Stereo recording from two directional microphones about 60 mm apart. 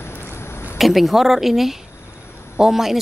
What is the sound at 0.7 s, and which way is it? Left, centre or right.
Speech, centre.